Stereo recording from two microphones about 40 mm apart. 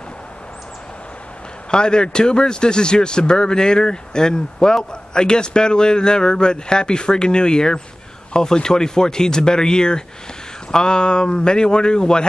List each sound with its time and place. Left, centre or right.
1.7 s a man's voice: left